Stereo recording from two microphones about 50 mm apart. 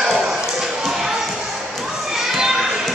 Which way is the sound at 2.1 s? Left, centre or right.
Centre.